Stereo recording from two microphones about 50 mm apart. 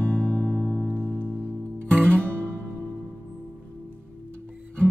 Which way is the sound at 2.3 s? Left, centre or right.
Right.